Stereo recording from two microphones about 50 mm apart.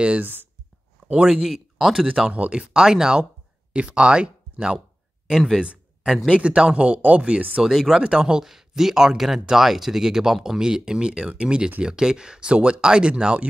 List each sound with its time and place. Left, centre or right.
1.1 s speech: centre
2.0 s speech: right
6.2 s speech: centre
7.6 s speech: centre
8.0 s speech: centre